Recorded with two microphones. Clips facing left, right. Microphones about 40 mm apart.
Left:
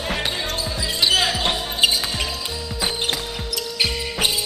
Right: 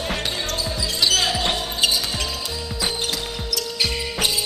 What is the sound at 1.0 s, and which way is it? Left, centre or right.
Basketball bounce, centre.